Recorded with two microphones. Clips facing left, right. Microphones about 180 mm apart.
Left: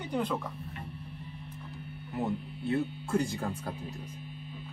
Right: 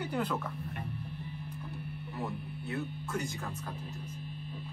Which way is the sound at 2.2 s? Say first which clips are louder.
Left 6 dB; 25° left (ahead or behind).